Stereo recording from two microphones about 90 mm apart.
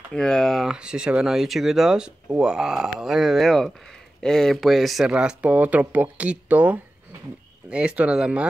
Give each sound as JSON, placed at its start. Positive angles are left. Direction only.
{"t": 0.1, "sound": "speech", "side_deg": 10}
{"t": 0.7, "sound": "speech", "side_deg": -10}
{"t": 5.1, "sound": "speech", "side_deg": -15}